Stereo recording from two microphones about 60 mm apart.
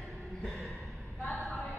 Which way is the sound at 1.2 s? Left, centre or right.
Left.